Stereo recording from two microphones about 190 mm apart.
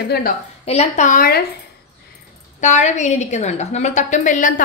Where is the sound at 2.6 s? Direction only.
40° left (ahead or behind).